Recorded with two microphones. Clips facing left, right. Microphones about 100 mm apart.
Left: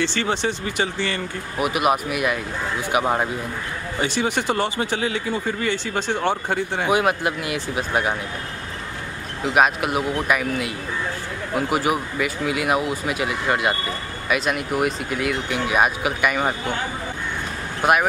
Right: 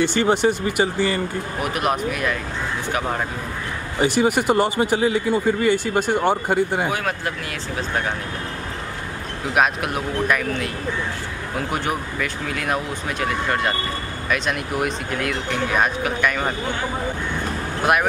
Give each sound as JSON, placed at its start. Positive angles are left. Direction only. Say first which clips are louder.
{"t": 0.0, "sound": "speech", "louder": "right 5 dB", "side_deg": -15}
{"t": 1.6, "sound": "speech", "louder": "left 3 dB", "side_deg": 5}
{"t": 4.0, "sound": "speech", "louder": "right 5 dB", "side_deg": -10}
{"t": 6.9, "sound": "speech", "louder": "left 5 dB", "side_deg": 15}
{"t": 9.5, "sound": "speech", "louder": "left 2 dB", "side_deg": 5}
{"t": 17.8, "sound": "speech", "louder": "left 1 dB", "side_deg": 0}